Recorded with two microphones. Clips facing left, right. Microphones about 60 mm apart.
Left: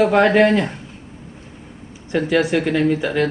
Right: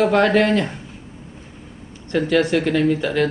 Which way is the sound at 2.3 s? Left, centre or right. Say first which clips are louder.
Even; centre.